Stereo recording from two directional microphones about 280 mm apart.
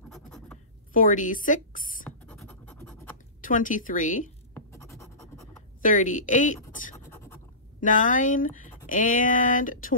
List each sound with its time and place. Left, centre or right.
0.1 s scratch: centre
0.9 s a woman's voice: left
2.0 s scratch: centre
3.3 s speech: left
5.8 s speech: left
6.7 s scratch: left
7.1 s writing: centre
7.8 s speech: left